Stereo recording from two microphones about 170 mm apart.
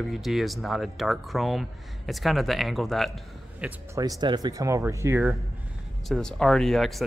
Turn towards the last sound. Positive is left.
turn(degrees=0)  # may be behind; listen again after turning